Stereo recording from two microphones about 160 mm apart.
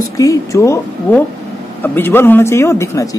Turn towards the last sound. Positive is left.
turn(degrees=15)  # may be behind; listen again after turning